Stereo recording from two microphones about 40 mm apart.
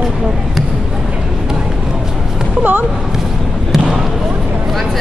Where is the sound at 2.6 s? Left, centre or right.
Right.